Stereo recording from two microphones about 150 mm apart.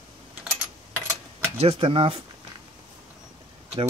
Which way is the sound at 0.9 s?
20° right (ahead or behind).